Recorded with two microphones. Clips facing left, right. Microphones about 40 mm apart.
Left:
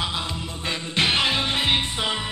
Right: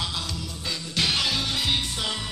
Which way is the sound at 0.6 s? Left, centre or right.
Left.